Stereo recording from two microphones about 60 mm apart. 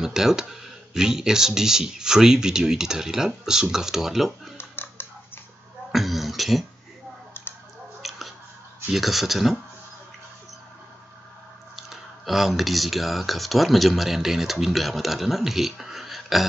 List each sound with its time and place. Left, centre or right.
0.0 s speech: centre
4.6 s typing: left
5.9 s beatboxing: centre
7.3 s a sound: left
8.0 s a sound: centre
8.9 s speech: centre
11.7 s speech: centre